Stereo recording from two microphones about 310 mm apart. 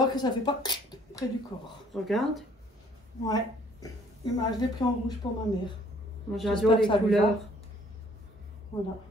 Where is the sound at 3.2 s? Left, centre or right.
Centre.